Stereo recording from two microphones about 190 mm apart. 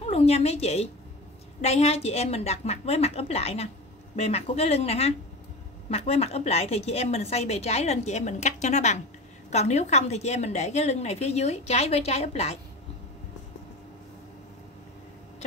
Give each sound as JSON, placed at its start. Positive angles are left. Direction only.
{"t": 0.0, "sound": "a woman's voice", "side_deg": 30}